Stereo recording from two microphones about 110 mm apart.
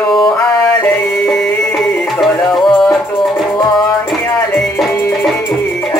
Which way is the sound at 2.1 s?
5° left (ahead or behind).